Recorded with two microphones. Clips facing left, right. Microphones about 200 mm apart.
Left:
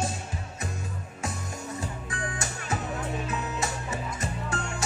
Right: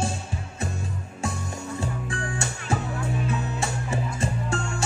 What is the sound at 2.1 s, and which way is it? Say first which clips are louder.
Music: right 3 dB; 30° right (ahead or behind).